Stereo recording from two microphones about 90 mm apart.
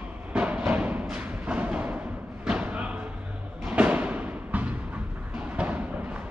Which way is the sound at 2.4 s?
15° right (ahead or behind).